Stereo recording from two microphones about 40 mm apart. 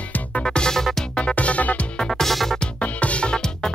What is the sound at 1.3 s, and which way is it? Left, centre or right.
Music, left.